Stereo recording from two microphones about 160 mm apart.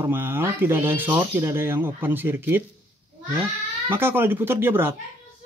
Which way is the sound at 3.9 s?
15° right (ahead or behind).